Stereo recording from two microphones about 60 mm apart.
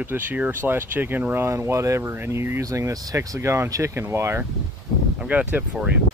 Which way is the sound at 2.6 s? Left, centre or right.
Right.